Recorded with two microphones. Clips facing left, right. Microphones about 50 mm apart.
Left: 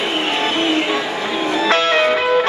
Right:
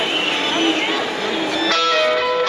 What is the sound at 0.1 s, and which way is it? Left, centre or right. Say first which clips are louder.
Music: left 1 dB; centre.